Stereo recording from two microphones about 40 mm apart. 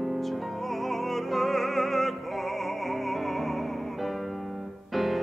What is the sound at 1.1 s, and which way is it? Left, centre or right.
Music, centre.